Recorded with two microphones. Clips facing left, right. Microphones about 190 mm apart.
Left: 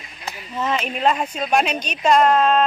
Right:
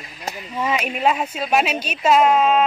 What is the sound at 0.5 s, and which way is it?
Speech, 10° right (ahead or behind).